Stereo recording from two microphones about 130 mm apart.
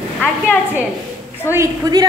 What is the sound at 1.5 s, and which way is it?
Speech, 25° right (ahead or behind).